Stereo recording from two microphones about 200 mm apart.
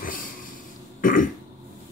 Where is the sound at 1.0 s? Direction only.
40° left (ahead or behind).